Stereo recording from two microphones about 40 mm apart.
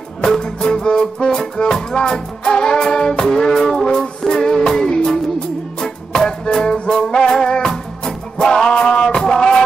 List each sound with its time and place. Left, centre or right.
0.2 s music: centre